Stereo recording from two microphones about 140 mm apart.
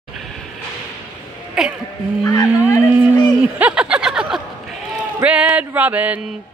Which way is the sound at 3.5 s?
10° right (ahead or behind).